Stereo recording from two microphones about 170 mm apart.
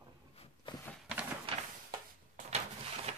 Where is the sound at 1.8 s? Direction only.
50° right (ahead or behind).